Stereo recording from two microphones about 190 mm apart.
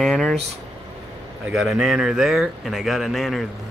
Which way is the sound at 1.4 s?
5° right (ahead or behind).